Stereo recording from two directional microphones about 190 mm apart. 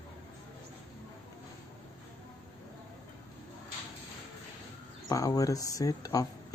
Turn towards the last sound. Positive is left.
turn(degrees=20)  # may be behind; listen again after turning